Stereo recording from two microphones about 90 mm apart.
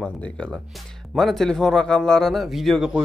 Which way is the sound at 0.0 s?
10° left (ahead or behind).